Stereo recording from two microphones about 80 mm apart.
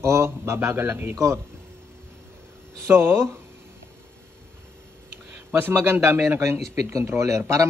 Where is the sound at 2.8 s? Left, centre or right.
Right.